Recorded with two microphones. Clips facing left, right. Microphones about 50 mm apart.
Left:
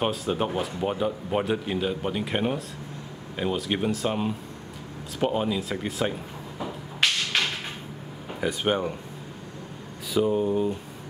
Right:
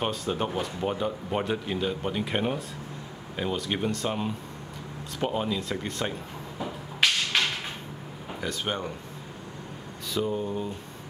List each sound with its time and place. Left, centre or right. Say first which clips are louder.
0.0 s speech: left 3 dB; centre
6.6 s a sound: even; centre
8.4 s speech: left 6 dB; centre
10.1 s speech: left 6 dB; centre